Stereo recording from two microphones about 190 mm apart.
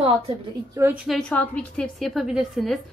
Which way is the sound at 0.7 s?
10° right (ahead or behind).